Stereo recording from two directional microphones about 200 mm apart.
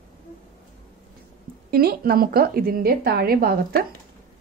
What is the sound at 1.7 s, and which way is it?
A woman's voice, 50° right (ahead or behind).